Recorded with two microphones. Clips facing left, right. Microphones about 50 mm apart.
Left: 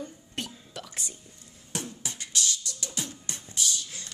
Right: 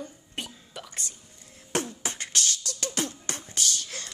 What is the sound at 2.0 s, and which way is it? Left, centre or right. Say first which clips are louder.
Beatboxing: right 2 dB; right.